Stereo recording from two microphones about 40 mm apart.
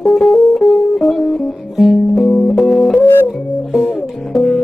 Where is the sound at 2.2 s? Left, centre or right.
Left.